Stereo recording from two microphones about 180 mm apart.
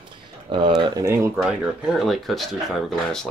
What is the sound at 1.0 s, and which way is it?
Speech, 15° right (ahead or behind).